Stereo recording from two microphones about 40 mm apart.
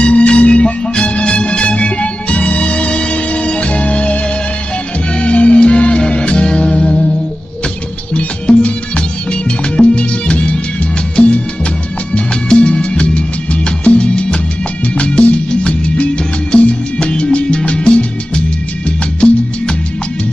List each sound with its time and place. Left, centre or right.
0.0 s music: left
8.1 s music: left
12.4 s music: left